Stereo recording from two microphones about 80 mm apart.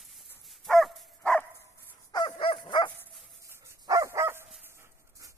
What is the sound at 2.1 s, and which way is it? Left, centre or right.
Dog, left.